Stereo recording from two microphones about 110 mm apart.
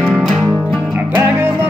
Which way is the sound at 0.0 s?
5° left (ahead or behind).